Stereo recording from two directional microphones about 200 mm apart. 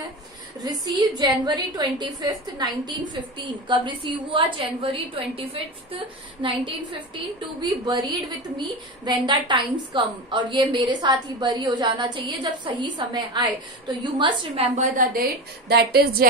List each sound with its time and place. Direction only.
0.6 s a woman's voice: 20° right (ahead or behind)
15.7 s a woman's voice: 55° right (ahead or behind)